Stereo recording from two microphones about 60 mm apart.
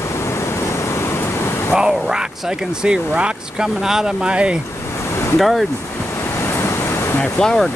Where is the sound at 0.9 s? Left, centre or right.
Left.